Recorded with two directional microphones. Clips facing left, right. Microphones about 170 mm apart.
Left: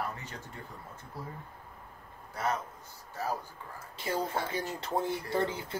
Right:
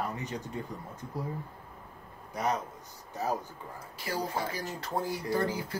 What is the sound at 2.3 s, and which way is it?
A man's voice, 15° right (ahead or behind).